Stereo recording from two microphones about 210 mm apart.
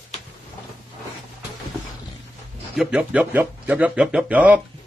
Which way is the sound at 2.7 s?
5° right (ahead or behind).